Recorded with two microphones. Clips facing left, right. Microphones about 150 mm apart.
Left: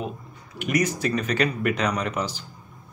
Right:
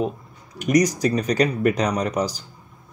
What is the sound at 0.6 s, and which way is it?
Speech, 40° right (ahead or behind).